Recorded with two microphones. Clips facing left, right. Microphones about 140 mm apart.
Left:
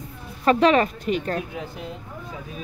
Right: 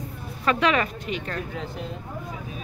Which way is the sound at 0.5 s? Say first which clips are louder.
Left 5 dB; 35° left (ahead or behind).